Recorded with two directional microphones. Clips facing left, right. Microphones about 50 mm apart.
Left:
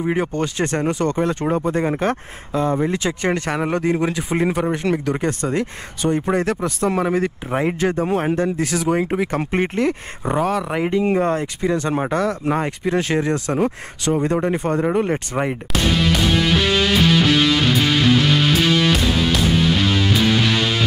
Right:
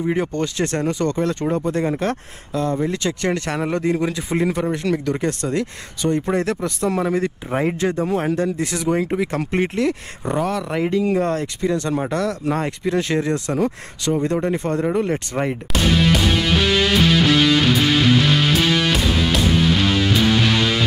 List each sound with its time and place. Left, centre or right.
0.0 s speech: centre
8.8 s speech: centre; by 14.1 s left
14.1 s speech: left